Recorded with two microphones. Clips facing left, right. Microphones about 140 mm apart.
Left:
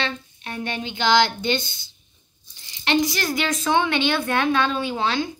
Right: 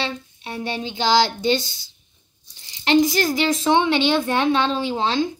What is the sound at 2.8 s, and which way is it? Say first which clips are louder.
Speech: right 5 dB; 45° right (ahead or behind).